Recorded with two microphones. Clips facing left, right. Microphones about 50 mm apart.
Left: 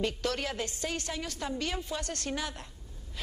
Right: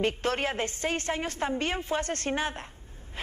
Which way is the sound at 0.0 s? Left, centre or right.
Right.